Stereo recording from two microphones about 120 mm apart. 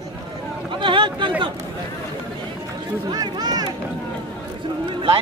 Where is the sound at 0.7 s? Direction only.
45° right (ahead or behind).